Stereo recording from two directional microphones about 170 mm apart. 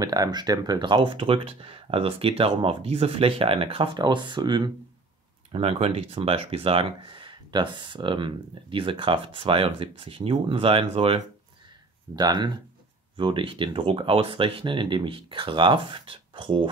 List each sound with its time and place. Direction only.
0.0 s speech: 20° right (ahead or behind)
5.5 s speech: 35° right (ahead or behind)
12.2 s speech: 25° right (ahead or behind)